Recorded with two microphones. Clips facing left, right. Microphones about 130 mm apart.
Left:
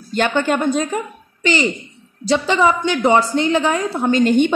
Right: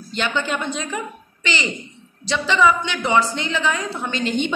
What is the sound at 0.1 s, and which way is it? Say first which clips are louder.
A child's voice: left 6 dB; 50° left (ahead or behind).